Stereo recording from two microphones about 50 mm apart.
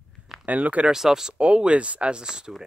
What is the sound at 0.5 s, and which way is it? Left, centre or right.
Speech, right.